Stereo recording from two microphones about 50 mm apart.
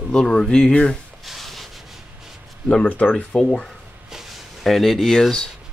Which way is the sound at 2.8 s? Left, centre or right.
Left.